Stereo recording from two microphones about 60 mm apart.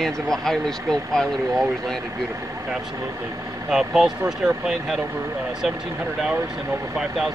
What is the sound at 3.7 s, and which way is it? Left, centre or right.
Speech, centre.